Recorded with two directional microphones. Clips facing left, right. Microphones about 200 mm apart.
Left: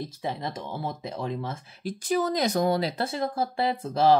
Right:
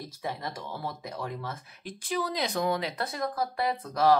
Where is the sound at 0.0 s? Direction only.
25° left (ahead or behind).